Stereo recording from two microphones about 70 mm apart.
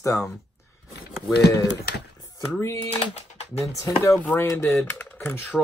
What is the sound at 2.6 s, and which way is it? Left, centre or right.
Speech, left.